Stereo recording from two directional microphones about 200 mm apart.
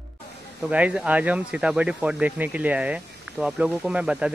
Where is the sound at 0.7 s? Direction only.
5° right (ahead or behind).